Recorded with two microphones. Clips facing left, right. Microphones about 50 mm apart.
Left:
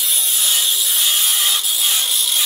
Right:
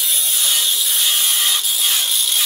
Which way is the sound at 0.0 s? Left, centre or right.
Centre.